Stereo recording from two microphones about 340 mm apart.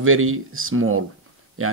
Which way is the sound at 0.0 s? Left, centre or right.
Right.